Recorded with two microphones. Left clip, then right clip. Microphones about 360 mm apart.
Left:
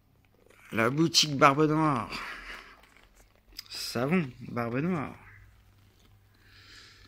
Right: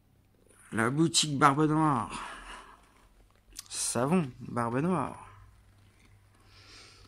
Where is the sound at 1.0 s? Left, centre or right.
Centre.